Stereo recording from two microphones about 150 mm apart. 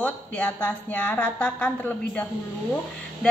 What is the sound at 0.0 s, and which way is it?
A woman's voice, 10° left (ahead or behind).